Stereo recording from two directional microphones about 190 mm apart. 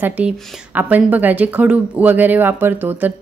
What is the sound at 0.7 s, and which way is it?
Speech, 10° right (ahead or behind).